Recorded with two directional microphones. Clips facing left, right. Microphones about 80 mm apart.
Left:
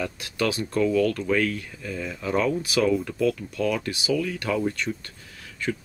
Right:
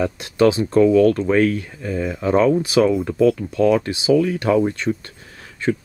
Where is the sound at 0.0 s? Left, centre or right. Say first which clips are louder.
Right 10 dB; right.